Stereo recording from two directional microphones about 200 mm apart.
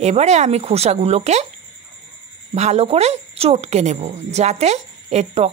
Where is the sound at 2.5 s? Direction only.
35° right (ahead or behind).